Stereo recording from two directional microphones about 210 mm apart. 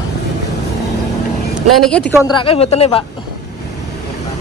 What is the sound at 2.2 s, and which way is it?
Speech, 25° left (ahead or behind).